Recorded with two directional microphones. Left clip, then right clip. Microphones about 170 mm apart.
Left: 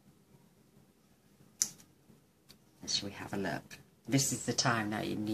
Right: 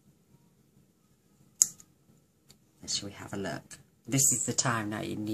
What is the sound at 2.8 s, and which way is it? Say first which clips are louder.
Speech: even; 15° right (ahead or behind).